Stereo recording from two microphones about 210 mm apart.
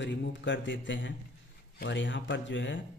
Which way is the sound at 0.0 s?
55° left (ahead or behind).